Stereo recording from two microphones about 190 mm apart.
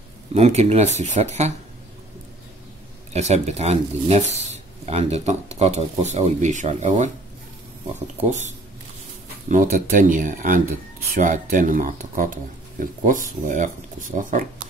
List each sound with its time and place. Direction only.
0.3 s speech: 35° right (ahead or behind)
3.1 s speech: 35° right (ahead or behind)
8.2 s speech: 40° right (ahead or behind)